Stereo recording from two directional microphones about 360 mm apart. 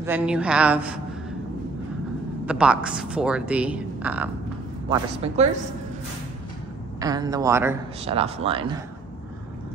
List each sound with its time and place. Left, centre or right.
0.0 s speech: centre
2.4 s speech: centre
4.8 s a man's voice: centre
7.0 s a man's voice: centre